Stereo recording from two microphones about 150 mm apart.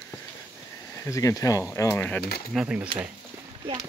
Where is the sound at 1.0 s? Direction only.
20° left (ahead or behind).